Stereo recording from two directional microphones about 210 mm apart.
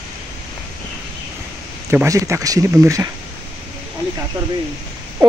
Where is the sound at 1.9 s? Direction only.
15° right (ahead or behind).